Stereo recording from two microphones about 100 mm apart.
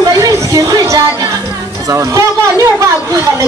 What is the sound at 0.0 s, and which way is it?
Music, 35° right (ahead or behind).